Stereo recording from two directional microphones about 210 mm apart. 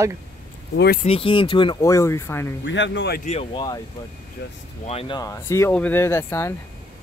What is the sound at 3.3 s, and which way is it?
Speech, 30° left (ahead or behind).